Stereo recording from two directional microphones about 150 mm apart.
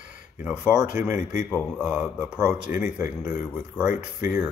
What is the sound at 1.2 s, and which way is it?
Speech, 50° left (ahead or behind).